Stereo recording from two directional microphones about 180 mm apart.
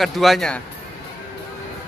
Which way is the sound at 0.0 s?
Centre (ahead or behind).